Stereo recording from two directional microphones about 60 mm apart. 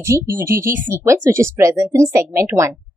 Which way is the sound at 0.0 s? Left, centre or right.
Right.